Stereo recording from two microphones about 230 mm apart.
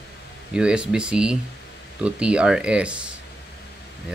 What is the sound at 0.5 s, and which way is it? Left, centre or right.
Speech, centre.